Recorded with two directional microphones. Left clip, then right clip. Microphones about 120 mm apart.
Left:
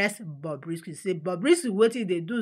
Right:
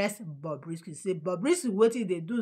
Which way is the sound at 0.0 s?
10° left (ahead or behind).